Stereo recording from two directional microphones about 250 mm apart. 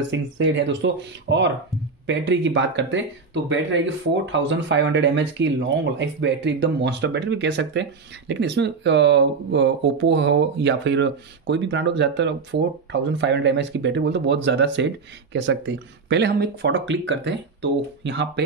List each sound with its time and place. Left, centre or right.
0.1 s speech: right